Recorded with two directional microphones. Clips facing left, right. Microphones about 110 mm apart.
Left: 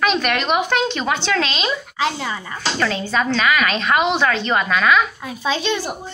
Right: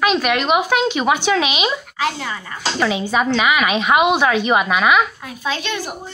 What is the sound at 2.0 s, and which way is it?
Speech, 20° left (ahead or behind).